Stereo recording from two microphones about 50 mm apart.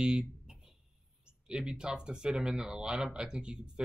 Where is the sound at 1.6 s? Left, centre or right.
Centre.